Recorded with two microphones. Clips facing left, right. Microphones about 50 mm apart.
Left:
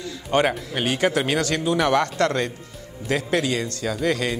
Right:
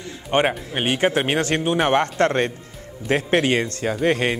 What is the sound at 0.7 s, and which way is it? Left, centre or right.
Speech, right.